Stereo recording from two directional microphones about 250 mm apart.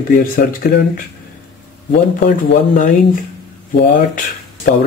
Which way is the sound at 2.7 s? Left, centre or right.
Left.